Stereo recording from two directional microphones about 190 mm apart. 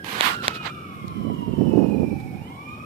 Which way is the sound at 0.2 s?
30° right (ahead or behind).